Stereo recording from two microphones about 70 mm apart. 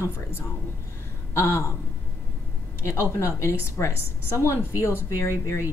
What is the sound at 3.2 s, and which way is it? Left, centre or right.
A woman's voice, left.